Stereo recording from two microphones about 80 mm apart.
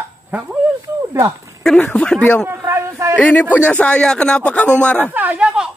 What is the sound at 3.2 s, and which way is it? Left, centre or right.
Speech, centre.